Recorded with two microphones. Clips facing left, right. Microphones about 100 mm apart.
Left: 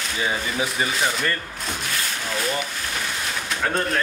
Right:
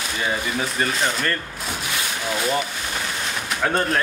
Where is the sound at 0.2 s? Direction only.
5° left (ahead or behind).